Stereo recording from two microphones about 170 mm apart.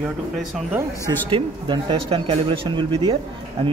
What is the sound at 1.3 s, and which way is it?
Speech, 30° right (ahead or behind).